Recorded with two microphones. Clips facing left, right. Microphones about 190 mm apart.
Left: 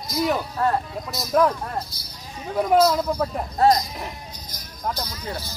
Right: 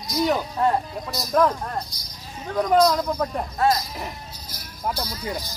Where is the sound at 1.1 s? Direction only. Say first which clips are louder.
Left 1 dB; centre (ahead or behind).